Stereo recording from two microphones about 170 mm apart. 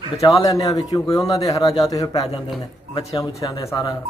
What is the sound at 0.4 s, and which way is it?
A man's voice, 20° left (ahead or behind).